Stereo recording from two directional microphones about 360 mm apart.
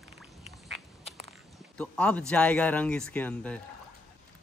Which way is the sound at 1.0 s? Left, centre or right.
Centre.